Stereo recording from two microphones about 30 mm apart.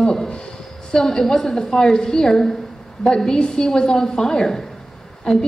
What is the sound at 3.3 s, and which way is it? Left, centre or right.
A woman's voice, left.